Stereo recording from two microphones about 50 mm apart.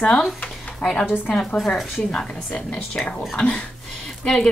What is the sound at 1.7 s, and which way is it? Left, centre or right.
Speech, centre.